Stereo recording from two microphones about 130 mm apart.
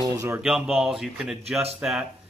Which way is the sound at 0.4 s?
5° right (ahead or behind).